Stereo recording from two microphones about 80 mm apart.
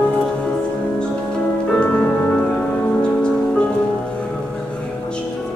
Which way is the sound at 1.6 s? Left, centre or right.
Centre.